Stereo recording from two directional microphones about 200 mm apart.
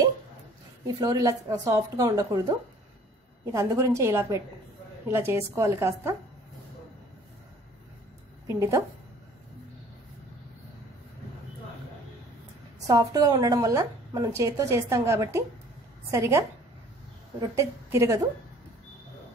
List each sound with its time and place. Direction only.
0.8 s a woman's voice: 20° right (ahead or behind)
3.5 s a woman's voice: 15° right (ahead or behind)
8.5 s a woman's voice: 15° right (ahead or behind)
12.8 s a woman's voice: 20° right (ahead or behind)